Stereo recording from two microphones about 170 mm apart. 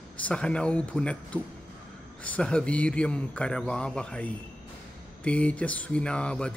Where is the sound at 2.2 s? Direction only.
5° left (ahead or behind).